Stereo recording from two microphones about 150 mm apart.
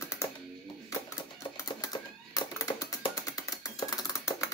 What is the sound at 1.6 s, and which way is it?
Typing, 25° left (ahead or behind).